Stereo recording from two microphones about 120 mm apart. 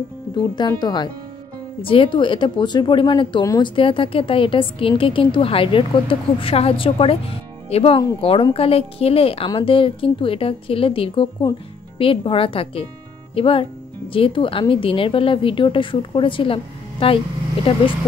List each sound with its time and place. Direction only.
0.4 s speech: 35° left (ahead or behind)
1.8 s speech: 45° left (ahead or behind)
3.7 s speech: 45° left (ahead or behind)